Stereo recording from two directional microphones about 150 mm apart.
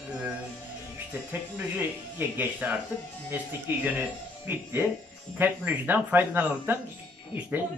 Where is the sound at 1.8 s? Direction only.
10° right (ahead or behind).